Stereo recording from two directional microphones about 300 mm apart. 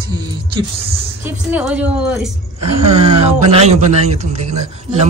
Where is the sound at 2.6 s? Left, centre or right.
Centre.